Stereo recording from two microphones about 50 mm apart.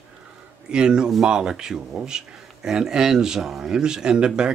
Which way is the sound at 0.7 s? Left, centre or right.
Centre.